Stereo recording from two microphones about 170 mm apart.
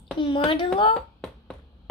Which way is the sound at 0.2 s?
30° left (ahead or behind).